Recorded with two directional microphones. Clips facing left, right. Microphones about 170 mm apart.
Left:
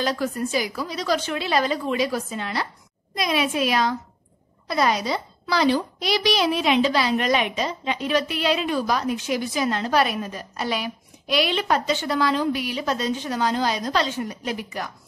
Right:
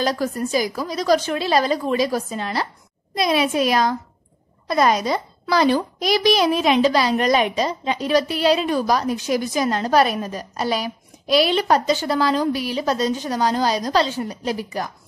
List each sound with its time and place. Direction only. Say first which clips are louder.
0.0 s a child's voice: right 2 dB; 40° right (ahead or behind)